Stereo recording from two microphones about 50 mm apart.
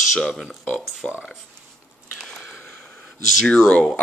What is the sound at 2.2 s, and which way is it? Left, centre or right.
Biting, centre.